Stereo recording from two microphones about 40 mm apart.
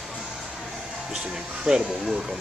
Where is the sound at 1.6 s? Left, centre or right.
Centre.